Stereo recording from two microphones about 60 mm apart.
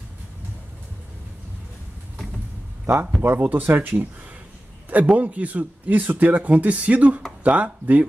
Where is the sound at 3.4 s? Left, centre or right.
Right.